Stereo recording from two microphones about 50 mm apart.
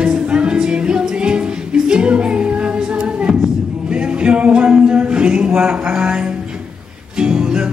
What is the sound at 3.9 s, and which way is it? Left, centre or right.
Music, right.